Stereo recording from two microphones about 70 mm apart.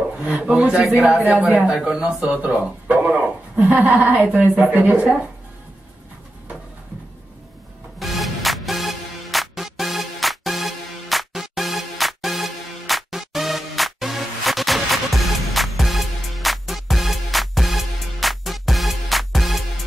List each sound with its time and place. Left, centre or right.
0.2 s speech: centre
8.0 s music: centre